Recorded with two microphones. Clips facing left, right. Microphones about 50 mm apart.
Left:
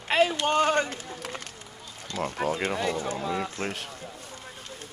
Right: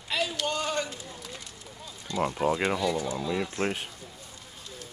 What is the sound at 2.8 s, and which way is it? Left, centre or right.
Speech, left.